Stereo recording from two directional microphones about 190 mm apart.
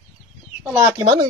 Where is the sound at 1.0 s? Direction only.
30° right (ahead or behind).